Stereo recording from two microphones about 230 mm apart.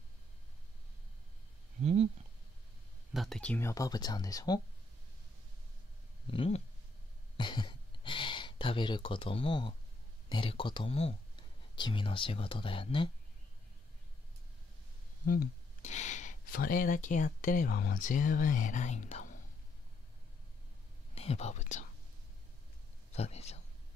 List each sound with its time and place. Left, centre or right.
1.8 s a sound: right
3.1 s speech: centre
6.3 s speech: left
15.2 s speech: left
21.1 s whispering: left
23.1 s speech: left